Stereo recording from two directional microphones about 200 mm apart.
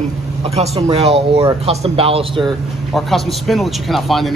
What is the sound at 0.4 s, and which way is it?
Speech, 30° right (ahead or behind).